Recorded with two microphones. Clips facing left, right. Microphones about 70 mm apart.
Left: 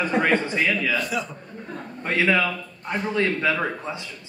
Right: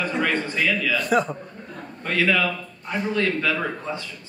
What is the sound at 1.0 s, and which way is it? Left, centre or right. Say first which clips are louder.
Speech: right 7 dB; right.